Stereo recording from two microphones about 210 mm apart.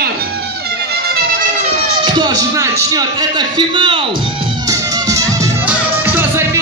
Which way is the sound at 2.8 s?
15° right (ahead or behind).